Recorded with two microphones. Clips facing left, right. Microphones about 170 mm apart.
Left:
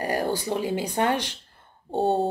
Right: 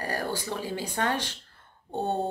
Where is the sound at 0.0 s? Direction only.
15° left (ahead or behind).